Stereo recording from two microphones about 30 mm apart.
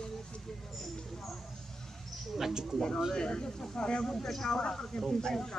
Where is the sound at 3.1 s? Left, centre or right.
Left.